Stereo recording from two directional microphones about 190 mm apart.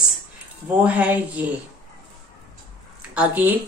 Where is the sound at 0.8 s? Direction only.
10° right (ahead or behind).